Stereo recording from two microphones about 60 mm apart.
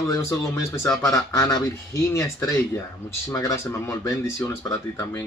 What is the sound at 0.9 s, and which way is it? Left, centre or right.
Speech, left.